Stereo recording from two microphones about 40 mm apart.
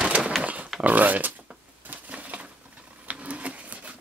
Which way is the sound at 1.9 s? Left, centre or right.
Right.